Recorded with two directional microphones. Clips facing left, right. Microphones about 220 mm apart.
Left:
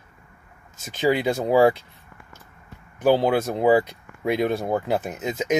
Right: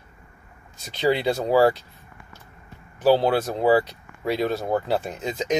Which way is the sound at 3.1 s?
10° left (ahead or behind).